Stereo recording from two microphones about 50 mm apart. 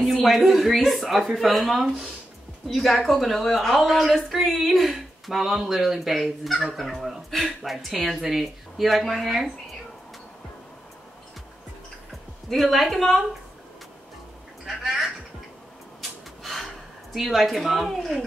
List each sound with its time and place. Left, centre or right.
0.0 s speech: centre
12.4 s speech: centre
16.0 s a sound: centre